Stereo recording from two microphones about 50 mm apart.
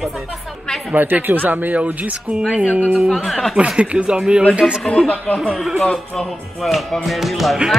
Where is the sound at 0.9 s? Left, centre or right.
Right.